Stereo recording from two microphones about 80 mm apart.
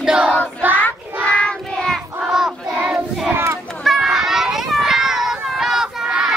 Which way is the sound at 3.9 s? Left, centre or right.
Centre.